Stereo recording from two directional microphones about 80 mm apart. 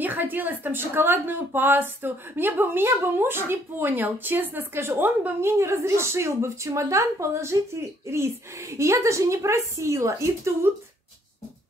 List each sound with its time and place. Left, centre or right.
0.0 s speech: right